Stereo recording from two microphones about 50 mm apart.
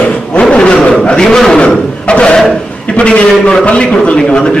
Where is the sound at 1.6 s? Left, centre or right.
Left.